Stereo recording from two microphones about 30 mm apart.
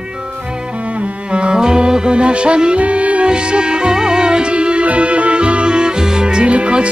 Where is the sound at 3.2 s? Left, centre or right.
Right.